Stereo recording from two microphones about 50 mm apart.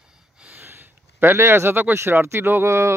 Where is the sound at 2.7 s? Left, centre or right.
Right.